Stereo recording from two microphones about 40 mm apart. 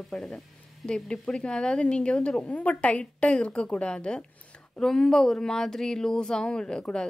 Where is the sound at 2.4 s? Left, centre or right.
Left.